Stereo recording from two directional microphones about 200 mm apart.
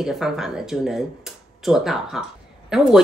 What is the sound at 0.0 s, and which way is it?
Speech, centre (ahead or behind).